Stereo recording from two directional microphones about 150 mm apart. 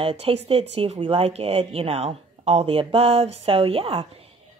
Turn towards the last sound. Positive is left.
turn(degrees=-40)  # may be behind; listen again after turning